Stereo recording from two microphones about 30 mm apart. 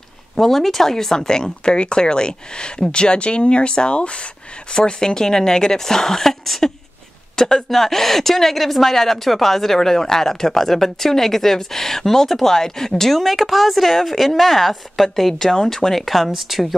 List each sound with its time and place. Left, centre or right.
0.4 s speech: centre; by 4.3 s left
4.7 s a woman's voice: left
7.7 s a woman's voice: centre
15.3 s a woman's voice: centre
16.3 s speech: centre